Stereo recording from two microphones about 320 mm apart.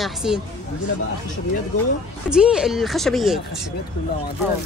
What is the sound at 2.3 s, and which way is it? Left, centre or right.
Speech, centre.